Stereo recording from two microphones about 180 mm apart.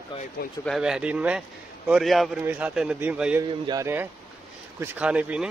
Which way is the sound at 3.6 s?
20° right (ahead or behind).